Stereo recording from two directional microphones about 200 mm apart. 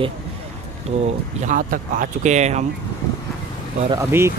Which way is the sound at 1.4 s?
45° right (ahead or behind).